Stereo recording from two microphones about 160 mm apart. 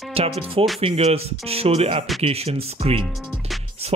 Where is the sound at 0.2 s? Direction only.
40° right (ahead or behind).